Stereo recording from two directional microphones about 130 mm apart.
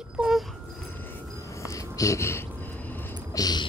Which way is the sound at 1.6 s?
25° left (ahead or behind).